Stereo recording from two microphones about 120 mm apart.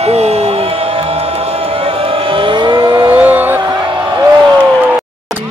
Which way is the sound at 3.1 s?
15° right (ahead or behind).